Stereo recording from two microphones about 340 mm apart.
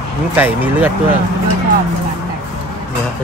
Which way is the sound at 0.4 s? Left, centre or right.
Centre.